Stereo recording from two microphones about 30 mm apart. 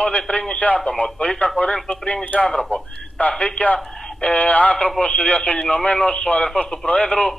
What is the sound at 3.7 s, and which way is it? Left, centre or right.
Radio, centre.